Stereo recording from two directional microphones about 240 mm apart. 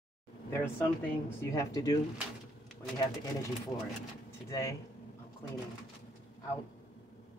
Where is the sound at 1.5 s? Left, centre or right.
Centre.